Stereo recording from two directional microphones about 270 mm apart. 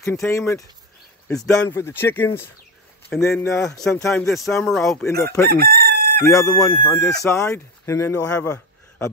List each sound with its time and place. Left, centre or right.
0.0 s speech: centre
5.6 s chicken: right
6.2 s speech: centre